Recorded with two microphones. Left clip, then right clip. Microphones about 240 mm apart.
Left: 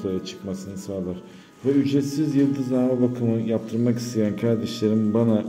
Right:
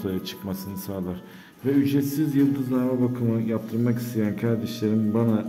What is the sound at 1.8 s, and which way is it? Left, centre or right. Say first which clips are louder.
A man's voice: left 1 dB; centre.